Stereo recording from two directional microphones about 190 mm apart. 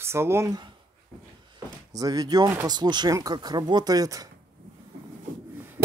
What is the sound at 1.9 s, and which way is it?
Speech, 20° right (ahead or behind).